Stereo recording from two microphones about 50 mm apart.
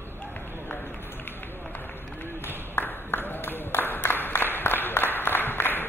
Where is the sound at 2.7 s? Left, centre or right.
Left.